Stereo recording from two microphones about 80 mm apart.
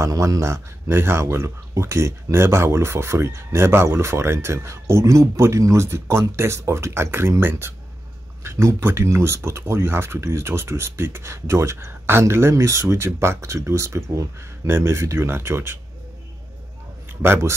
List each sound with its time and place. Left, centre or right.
0.0 s speech: right
17.2 s speech: right